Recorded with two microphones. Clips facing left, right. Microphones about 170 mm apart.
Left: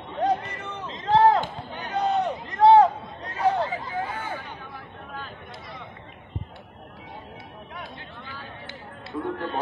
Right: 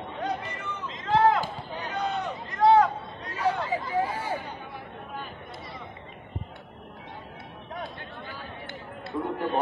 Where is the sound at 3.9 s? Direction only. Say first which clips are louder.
Right 3 dB; 35° right (ahead or behind).